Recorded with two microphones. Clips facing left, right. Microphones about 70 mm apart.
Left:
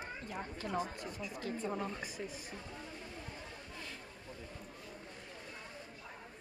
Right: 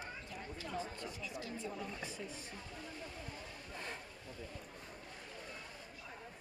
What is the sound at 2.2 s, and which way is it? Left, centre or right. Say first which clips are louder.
Speech: left 3 dB; left.